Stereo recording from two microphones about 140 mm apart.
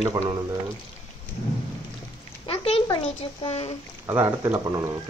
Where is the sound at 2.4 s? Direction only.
45° left (ahead or behind).